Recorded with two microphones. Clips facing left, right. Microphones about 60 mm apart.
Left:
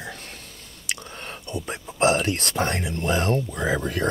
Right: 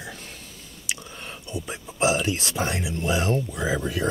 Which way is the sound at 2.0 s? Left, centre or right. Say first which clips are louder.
Left 2 dB; left.